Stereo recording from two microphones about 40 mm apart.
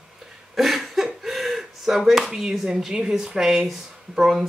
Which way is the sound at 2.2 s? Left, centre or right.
Centre.